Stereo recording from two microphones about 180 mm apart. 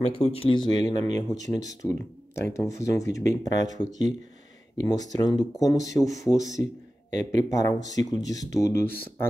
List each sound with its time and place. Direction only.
0.0 s speech: 35° left (ahead or behind); by 6.6 s 20° left (ahead or behind)
7.1 s speech: 45° right (ahead or behind)
7.4 s speech: 20° left (ahead or behind)